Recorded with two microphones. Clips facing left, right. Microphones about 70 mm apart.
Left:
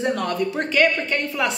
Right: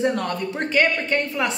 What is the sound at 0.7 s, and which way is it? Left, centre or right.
Speech, right.